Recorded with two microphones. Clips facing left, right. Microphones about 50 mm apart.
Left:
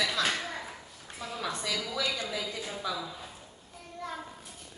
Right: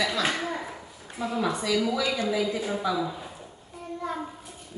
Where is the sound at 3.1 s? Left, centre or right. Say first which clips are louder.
Right 7 dB; centre.